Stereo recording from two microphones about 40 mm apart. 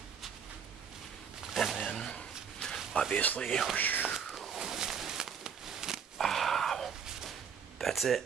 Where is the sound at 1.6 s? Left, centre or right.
Centre.